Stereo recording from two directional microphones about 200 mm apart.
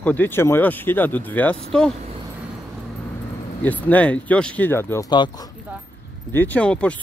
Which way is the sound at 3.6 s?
10° left (ahead or behind).